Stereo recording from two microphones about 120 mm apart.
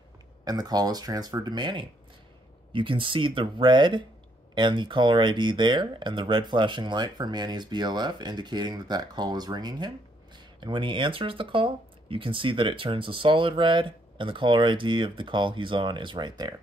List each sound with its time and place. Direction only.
0.5 s speech: 35° right (ahead or behind)